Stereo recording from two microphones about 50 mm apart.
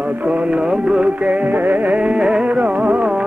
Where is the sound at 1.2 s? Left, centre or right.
Right.